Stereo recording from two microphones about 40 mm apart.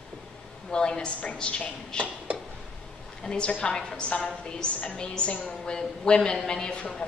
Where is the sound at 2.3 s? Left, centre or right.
Right.